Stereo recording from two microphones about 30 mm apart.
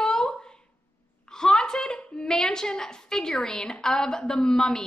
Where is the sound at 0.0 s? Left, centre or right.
Left.